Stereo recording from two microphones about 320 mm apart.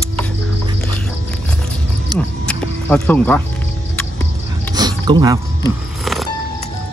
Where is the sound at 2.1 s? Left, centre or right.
Centre.